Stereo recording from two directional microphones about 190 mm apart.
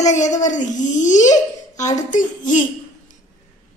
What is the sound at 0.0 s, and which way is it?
A woman's voice, 40° left (ahead or behind).